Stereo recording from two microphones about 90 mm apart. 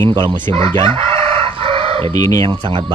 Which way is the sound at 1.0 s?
90° right.